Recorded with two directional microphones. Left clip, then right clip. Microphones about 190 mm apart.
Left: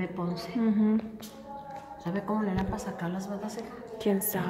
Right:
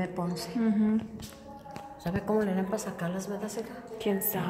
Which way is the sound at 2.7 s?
60° right (ahead or behind).